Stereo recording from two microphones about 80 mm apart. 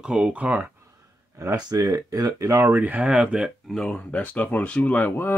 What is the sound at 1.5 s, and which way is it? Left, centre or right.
Speech, right.